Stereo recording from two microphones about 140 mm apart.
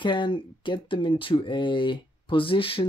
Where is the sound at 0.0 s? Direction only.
35° left (ahead or behind).